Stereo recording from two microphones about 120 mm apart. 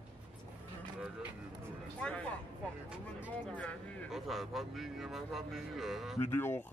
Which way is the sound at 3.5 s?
10° left (ahead or behind).